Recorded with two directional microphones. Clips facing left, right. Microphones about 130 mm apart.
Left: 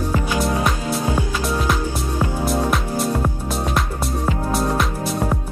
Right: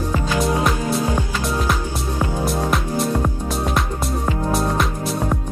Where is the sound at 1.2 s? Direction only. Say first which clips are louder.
Left 1 dB; 10° left (ahead or behind).